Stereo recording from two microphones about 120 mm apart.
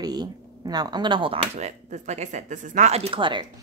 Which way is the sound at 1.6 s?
75° right (ahead or behind).